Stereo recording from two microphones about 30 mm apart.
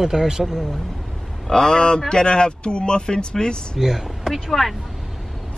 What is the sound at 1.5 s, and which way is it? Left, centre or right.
Speech, left.